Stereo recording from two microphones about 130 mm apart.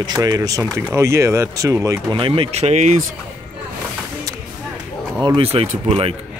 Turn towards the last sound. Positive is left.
turn(degrees=-45)  # may be behind; listen again after turning